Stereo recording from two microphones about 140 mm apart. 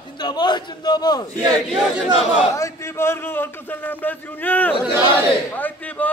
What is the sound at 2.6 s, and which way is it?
A man's voice, 20° left (ahead or behind).